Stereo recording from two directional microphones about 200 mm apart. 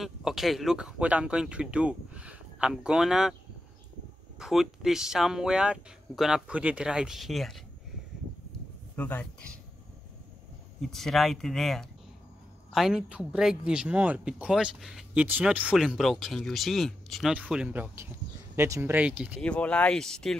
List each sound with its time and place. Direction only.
0.0 s a man's voice: centre (ahead or behind)
4.4 s a man's voice: centre (ahead or behind)
8.9 s speech: 10° left (ahead or behind)
10.8 s a man's voice: centre (ahead or behind)
19.4 s a man's voice: 5° left (ahead or behind)